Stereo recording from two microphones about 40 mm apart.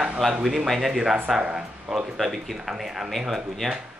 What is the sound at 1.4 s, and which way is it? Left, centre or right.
Speech, right.